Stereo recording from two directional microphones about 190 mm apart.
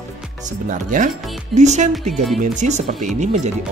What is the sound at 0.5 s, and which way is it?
Speech, 45° right (ahead or behind).